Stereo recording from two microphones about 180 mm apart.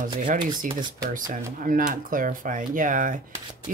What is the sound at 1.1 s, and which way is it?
Speech, 50° right (ahead or behind).